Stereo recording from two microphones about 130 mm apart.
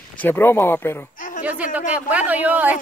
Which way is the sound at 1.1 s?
90° left.